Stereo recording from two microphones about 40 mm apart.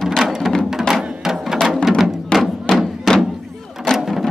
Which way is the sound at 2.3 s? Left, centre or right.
Centre.